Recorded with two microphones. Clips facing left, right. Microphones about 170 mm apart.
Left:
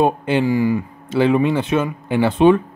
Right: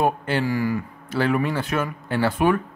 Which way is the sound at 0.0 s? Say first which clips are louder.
Left 5 dB; 20° left (ahead or behind).